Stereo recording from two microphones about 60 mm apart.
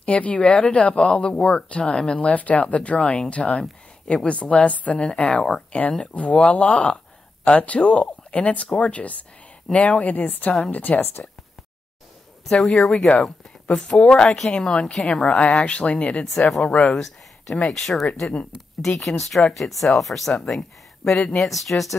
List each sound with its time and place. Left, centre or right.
0.0 s speech: left
2.2 s speech: left
12.4 s a woman's voice: centre; by 16.3 s left
16.3 s a woman's voice: centre
16.6 s speech: centre
16.9 s a woman's voice: centre